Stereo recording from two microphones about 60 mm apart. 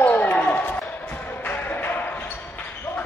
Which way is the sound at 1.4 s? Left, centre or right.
Left.